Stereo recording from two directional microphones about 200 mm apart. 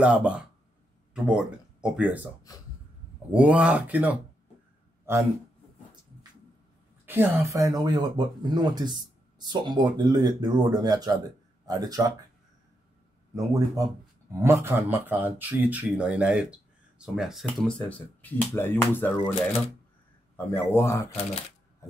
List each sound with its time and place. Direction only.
0.0 s speech: 5° right (ahead or behind)
2.5 s speech: 20° left (ahead or behind)
3.3 s speech: 5° right (ahead or behind)
7.1 s speech: 10° right (ahead or behind)
13.3 s speech: 15° right (ahead or behind); by 19.1 s 10° left (ahead or behind)
20.3 s speech: 10° left (ahead or behind)